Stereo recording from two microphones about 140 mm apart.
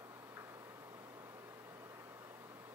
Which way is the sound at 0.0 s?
20° right (ahead or behind).